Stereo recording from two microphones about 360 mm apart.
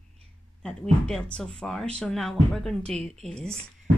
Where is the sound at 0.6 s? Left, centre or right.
Centre.